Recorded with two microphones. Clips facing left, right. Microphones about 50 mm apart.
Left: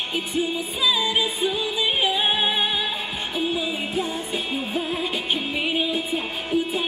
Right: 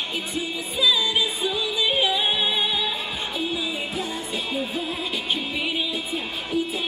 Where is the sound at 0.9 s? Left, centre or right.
Left.